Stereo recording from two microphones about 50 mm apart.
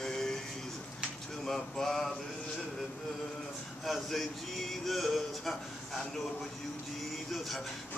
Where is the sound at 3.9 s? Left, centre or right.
Centre.